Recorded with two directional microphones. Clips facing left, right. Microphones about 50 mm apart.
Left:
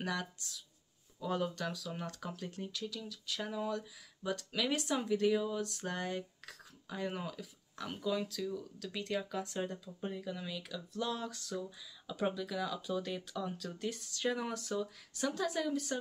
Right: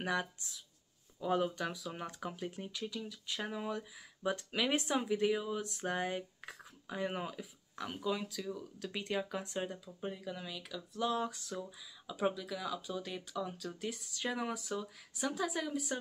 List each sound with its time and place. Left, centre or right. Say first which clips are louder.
0.0 s speech: right 2 dB; right